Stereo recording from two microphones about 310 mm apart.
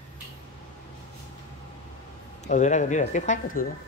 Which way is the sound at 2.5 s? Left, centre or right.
Left.